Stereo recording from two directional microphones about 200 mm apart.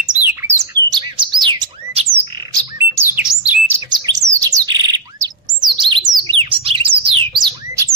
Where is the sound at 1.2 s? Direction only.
25° right (ahead or behind).